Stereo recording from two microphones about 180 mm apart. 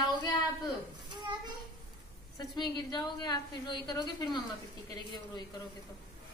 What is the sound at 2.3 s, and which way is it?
A woman's voice, 25° left (ahead or behind).